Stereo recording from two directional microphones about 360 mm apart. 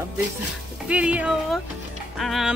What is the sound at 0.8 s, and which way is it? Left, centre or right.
A woman's voice, centre.